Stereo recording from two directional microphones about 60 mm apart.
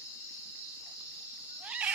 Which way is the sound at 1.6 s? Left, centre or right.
Centre.